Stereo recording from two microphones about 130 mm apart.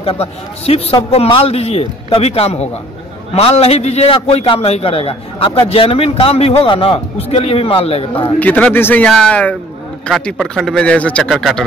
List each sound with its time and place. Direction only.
0.0 s a man's voice: 50° left (ahead or behind)
8.4 s a man's voice: 10° left (ahead or behind)